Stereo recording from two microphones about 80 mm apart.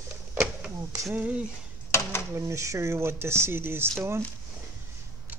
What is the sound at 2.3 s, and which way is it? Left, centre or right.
Speech, right.